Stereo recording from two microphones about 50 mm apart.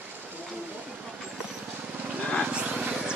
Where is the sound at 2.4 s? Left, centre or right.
Right.